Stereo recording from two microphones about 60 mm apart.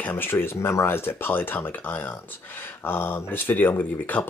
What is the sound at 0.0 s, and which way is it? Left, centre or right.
Speech, left.